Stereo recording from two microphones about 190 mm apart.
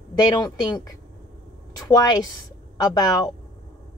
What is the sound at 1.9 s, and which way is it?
Speech, 20° left (ahead or behind).